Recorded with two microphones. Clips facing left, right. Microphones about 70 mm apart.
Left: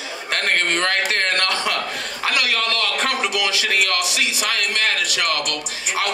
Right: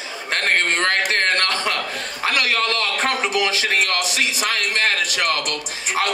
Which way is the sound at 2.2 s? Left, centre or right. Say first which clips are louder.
Right 1 dB; right.